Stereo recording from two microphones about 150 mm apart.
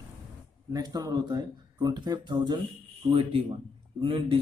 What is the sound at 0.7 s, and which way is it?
A man's voice, 25° right (ahead or behind).